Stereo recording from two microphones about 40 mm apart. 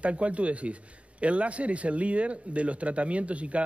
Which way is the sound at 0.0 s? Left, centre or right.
Right.